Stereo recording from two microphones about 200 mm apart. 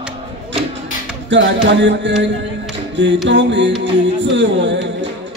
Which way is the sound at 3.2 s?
65° right (ahead or behind).